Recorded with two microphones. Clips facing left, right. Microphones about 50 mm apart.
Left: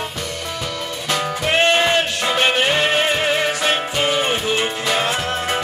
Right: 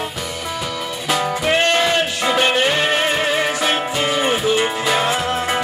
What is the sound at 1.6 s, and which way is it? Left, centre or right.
Music, centre.